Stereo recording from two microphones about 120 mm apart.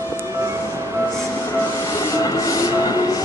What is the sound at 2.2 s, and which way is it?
Train, 30° left (ahead or behind).